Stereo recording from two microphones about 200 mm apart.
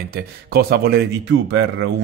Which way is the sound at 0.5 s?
50° right (ahead or behind).